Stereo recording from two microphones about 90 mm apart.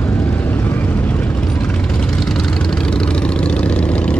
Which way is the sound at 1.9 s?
5° left (ahead or behind).